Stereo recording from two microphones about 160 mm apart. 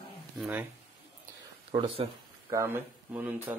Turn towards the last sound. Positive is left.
turn(degrees=-10)  # may be behind; listen again after turning